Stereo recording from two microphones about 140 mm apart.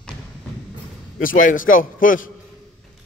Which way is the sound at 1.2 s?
75° left (ahead or behind).